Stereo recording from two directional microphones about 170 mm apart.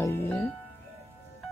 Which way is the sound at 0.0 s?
10° left (ahead or behind).